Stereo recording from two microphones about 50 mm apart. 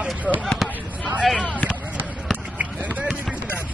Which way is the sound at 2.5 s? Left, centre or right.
Right.